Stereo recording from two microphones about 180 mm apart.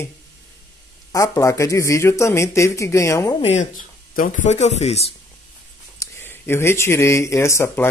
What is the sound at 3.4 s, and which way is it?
Speech, 45° left (ahead or behind).